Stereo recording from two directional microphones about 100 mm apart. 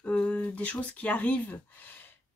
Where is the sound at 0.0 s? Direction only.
10° left (ahead or behind).